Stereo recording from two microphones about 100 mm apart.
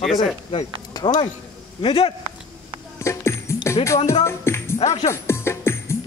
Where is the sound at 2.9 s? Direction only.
30° left (ahead or behind).